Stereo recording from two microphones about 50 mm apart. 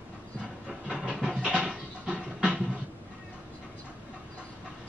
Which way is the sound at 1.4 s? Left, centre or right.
Centre.